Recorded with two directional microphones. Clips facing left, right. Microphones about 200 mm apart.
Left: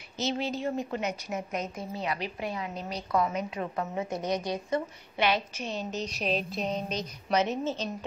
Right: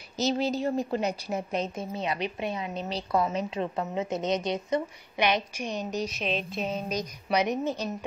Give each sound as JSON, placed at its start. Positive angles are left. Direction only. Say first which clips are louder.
{"t": 0.2, "sound": "a woman's voice", "louder": "right 4 dB", "side_deg": -40}
{"t": 6.1, "sound": "a sound", "louder": "left 1 dB", "side_deg": 40}
{"t": 6.5, "sound": "a woman's voice", "louder": "right 1 dB", "side_deg": -5}